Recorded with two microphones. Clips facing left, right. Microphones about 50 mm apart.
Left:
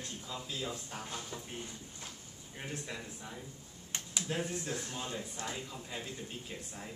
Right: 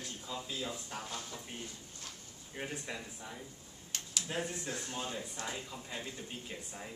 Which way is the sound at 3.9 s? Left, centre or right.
Left.